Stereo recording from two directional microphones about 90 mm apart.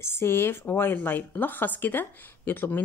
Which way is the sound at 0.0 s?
25° left (ahead or behind).